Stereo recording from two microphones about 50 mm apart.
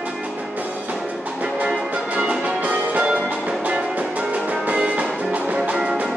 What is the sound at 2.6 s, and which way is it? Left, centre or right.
Music, right.